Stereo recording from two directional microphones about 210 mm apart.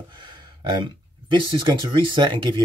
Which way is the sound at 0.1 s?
20° right (ahead or behind).